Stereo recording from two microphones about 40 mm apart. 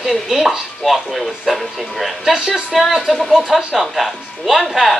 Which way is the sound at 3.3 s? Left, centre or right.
Centre.